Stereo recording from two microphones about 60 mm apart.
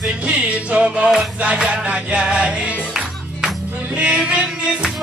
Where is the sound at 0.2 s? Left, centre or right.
Right.